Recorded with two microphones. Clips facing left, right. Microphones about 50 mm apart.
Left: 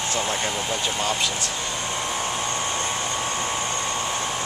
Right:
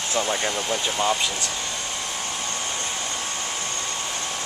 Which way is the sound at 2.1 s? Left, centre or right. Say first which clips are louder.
Left 4 dB; centre.